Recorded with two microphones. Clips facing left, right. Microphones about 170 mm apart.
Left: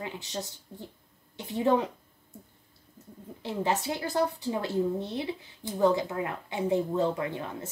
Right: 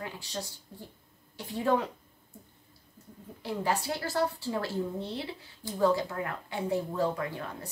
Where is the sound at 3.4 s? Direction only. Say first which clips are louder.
Left 2 dB; 20° left (ahead or behind).